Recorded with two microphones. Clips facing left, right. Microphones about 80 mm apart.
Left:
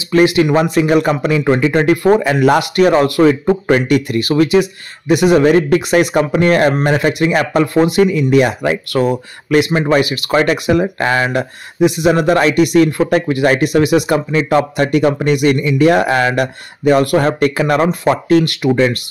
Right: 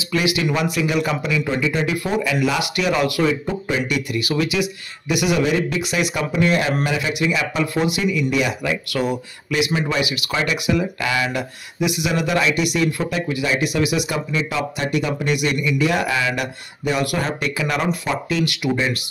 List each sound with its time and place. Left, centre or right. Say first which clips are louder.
0.1 s speech: left 10 dB; left